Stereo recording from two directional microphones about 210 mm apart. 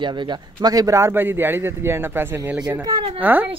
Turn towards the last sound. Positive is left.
turn(degrees=-10)  # may be behind; listen again after turning